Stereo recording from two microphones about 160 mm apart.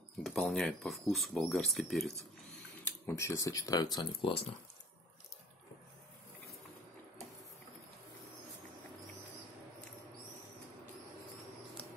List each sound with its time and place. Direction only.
0.2 s speech: centre (ahead or behind)
2.8 s speech: 15° left (ahead or behind); by 4.5 s 35° left (ahead or behind)